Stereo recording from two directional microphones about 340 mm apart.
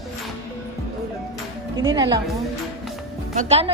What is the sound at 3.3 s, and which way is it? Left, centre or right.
Speech, centre.